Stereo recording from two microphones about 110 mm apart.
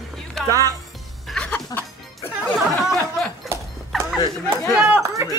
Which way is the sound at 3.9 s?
Centre (ahead or behind).